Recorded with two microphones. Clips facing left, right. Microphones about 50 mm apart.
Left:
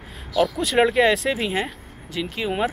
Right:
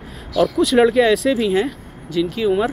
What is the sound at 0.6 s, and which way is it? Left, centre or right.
Speech, left.